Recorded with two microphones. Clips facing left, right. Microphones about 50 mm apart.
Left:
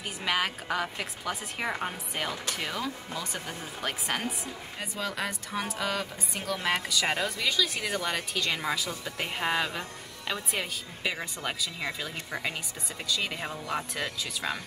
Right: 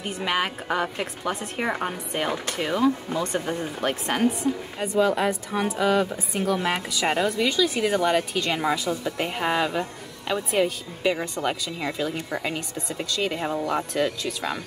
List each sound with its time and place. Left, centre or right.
0.0 s a woman's voice: centre